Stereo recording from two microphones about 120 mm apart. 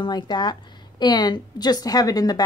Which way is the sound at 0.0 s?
35° left (ahead or behind).